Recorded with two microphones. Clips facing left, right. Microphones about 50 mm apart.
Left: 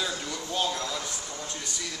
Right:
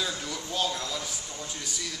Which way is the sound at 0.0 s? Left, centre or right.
Centre.